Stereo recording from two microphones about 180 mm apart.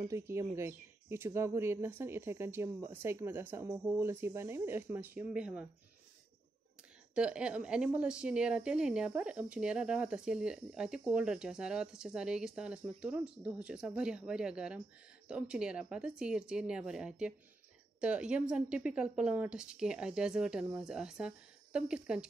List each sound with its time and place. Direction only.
0.1 s speech: 15° right (ahead or behind)
7.2 s a woman's voice: 5° right (ahead or behind)